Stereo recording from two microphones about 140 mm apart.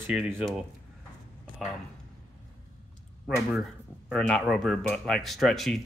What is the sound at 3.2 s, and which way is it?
Speech, centre (ahead or behind).